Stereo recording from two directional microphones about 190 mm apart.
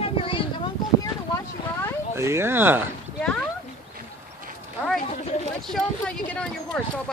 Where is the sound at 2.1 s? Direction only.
15° right (ahead or behind).